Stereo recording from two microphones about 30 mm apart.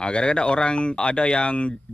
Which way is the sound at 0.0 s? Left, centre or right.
Left.